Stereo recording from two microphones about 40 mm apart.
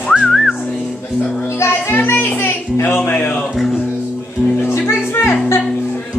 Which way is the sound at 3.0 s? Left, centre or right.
Left.